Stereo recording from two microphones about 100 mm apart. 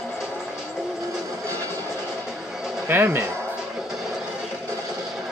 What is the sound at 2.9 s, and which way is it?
Speech, 20° right (ahead or behind).